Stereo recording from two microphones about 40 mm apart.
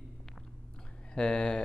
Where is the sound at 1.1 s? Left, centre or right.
Left.